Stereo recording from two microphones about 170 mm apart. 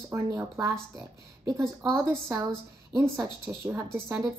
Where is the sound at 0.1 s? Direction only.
20° right (ahead or behind).